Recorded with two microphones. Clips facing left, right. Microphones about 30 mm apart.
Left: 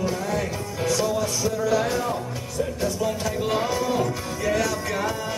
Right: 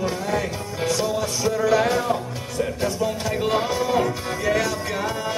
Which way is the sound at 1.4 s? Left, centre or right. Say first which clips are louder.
Right 6 dB; right.